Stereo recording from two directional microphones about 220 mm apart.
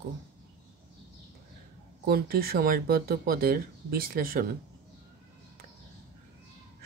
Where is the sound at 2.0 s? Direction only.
45° right (ahead or behind).